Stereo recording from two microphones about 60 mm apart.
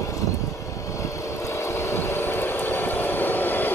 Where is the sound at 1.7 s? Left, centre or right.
Left.